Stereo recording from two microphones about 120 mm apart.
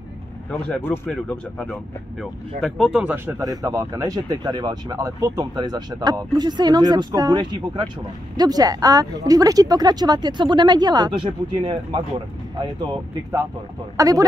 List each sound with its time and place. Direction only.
0.5 s speech: 10° left (ahead or behind)
0.7 s speech: 20° left (ahead or behind)
2.1 s speech: centre (ahead or behind)
3.3 s speech: 25° right (ahead or behind); by 12.0 s 45° right (ahead or behind)
13.9 s speech: 30° right (ahead or behind)